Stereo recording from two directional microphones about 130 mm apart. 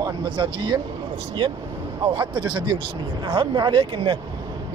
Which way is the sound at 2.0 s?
35° right (ahead or behind).